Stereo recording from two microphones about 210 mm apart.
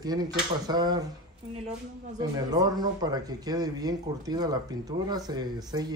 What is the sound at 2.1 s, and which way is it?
Speech, 20° right (ahead or behind).